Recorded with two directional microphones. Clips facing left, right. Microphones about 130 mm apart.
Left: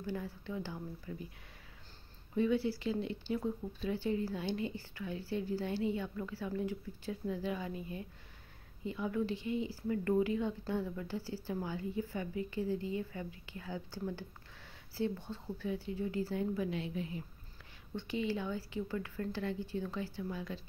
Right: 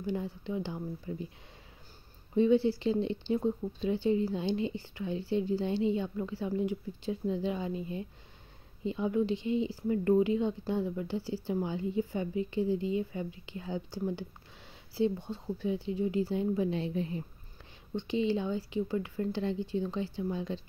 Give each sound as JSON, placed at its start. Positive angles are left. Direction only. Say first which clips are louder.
{"t": 0.0, "sound": "speech", "louder": "right 5 dB", "side_deg": -20}
{"t": 2.3, "sound": "speech", "louder": "right 7 dB", "side_deg": -25}
{"t": 17.9, "sound": "speech", "louder": "right 6 dB", "side_deg": -20}